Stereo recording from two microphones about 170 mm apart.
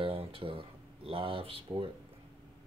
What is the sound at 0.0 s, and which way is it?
Speech, 35° right (ahead or behind).